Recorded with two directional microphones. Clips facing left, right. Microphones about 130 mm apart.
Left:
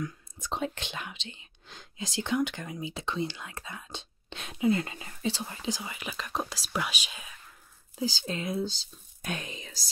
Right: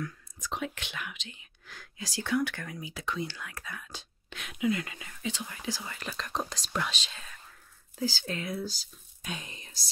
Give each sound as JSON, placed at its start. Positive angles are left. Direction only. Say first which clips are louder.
{"t": 0.0, "sound": "speech", "louder": "left 2 dB", "side_deg": 30}
{"t": 5.7, "sound": "speech", "louder": "left 2 dB", "side_deg": 15}
{"t": 9.2, "sound": "speech", "louder": "left 4 dB", "side_deg": 55}